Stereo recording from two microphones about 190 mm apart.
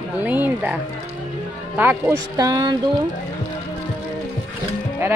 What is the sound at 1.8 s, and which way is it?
Speech, 10° right (ahead or behind).